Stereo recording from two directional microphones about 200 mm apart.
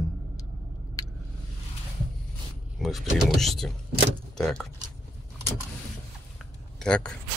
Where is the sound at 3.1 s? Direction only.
Centre (ahead or behind).